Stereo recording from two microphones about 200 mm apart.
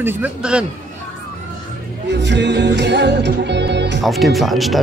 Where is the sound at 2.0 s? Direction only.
60° right (ahead or behind).